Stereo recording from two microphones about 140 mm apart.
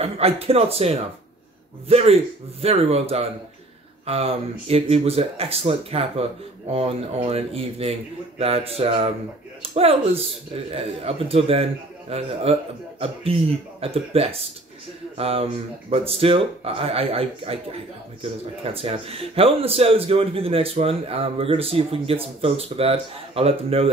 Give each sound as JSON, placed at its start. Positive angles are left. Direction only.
{"t": 0.0, "sound": "speech", "side_deg": -45}